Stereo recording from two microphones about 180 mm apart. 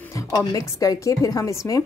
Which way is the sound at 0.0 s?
20° left (ahead or behind).